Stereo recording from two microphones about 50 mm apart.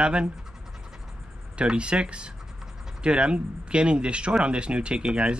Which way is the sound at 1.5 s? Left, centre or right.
Right.